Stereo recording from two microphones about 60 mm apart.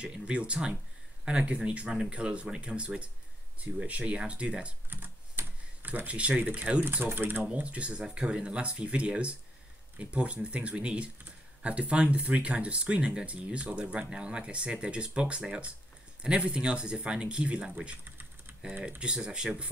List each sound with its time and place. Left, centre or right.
0.0 s speech: centre
4.8 s computer keyboard: right
5.8 s speech: right
7.1 s speech: right
7.5 s speech: right